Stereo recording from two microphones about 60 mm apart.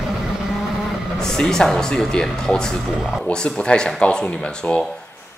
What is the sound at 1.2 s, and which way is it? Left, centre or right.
Speech, centre.